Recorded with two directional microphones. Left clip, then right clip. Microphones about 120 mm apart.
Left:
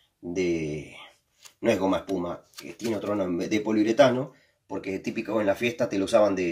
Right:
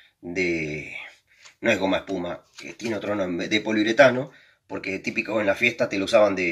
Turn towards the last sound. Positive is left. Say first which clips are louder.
# right 3 dB
turn(degrees=5)  # may be behind; listen again after turning